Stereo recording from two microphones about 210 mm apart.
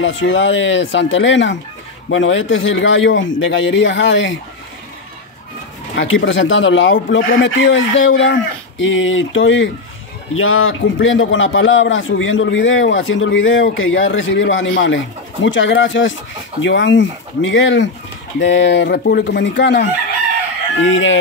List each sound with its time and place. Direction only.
0.0 s a man's voice: 65° left (ahead or behind)
5.9 s a man's voice: 65° left (ahead or behind)